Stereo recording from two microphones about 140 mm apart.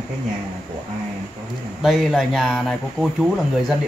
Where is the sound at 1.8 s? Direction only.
Centre (ahead or behind).